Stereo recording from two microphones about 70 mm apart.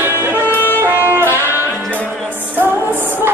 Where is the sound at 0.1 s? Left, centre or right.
Right.